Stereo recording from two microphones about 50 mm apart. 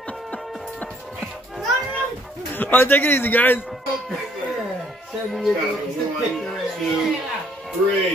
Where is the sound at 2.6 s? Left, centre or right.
Left.